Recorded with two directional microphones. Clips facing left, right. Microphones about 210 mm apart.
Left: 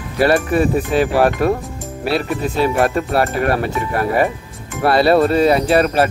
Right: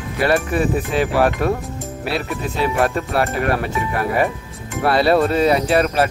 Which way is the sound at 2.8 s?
45° left (ahead or behind).